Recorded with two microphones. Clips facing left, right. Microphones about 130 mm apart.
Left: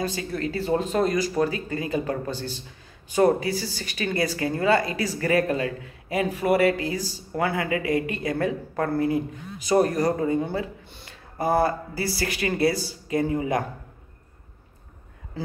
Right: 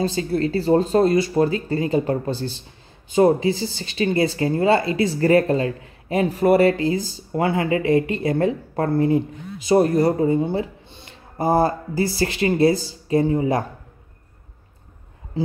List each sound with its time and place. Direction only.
0.0 s speech: 30° right (ahead or behind)